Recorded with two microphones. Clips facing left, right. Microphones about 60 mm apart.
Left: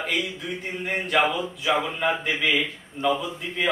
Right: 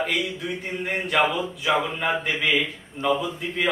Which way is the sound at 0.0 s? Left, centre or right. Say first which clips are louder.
Right 2 dB; centre.